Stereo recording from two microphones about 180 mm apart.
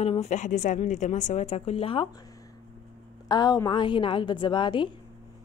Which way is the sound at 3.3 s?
20° left (ahead or behind).